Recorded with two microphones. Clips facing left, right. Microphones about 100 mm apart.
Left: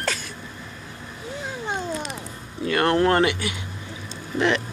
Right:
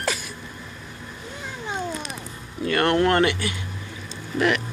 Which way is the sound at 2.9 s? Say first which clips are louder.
Even; 25° left (ahead or behind).